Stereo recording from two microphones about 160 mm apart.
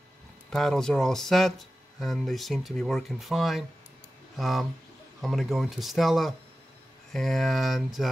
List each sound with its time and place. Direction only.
0.5 s speech: centre (ahead or behind)